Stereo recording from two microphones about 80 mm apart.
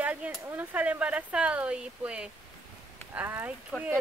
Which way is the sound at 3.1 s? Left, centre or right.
Right.